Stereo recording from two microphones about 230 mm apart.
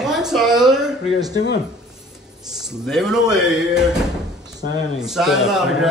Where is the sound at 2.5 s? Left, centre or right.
Centre.